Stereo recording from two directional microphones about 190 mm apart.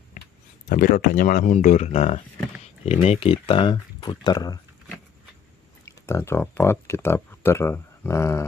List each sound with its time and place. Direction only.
0.7 s speech: 45° left (ahead or behind); by 4.6 s 20° left (ahead or behind)
5.9 s speech: 15° left (ahead or behind)